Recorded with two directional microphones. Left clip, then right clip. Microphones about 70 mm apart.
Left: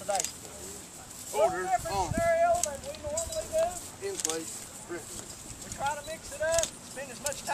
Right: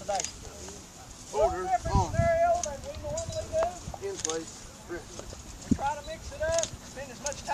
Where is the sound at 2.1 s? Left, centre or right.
Centre.